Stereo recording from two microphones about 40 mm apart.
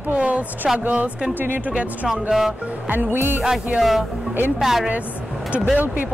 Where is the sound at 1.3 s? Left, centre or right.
Right.